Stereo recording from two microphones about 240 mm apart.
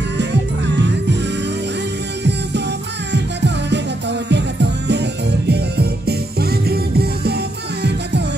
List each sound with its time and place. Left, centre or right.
3.1 s music: right